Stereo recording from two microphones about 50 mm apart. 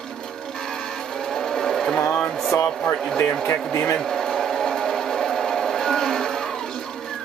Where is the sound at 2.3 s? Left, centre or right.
Centre.